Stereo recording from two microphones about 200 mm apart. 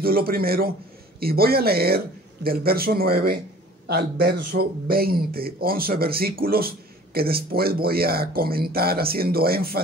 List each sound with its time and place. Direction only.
0.0 s speech: 50° right (ahead or behind)